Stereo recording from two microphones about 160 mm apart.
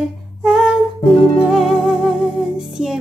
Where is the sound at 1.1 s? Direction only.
35° left (ahead or behind).